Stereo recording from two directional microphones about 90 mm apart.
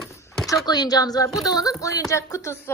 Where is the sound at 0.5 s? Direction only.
45° left (ahead or behind).